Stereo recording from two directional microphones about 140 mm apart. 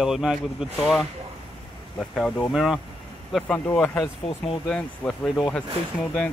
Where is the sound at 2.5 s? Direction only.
5° right (ahead or behind).